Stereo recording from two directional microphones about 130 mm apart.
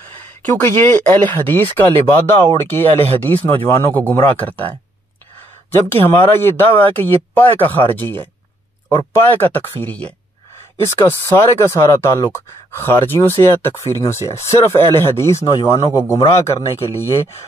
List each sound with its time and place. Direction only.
0.4 s speech: 15° left (ahead or behind)